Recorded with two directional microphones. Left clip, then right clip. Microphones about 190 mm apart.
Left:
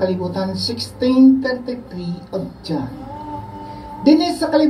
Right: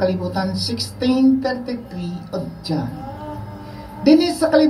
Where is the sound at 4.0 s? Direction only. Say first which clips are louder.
Even; 15° left (ahead or behind).